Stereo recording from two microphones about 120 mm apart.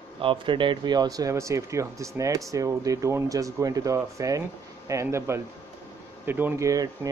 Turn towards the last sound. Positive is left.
turn(degrees=-15)  # may be behind; listen again after turning